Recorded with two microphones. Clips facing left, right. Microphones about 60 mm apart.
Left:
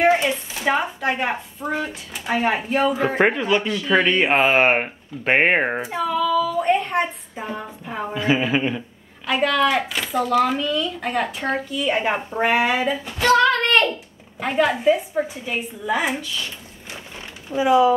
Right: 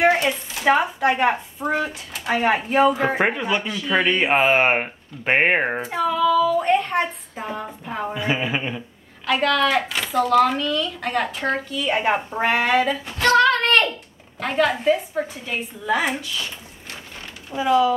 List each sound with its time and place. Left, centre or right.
0.0 s a woman's voice: centre
1.6 s speech: centre
1.9 s a woman's voice: centre
17.6 s speech: centre